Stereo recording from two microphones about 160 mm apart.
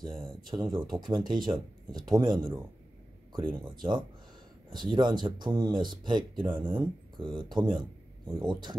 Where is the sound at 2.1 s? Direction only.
25° right (ahead or behind).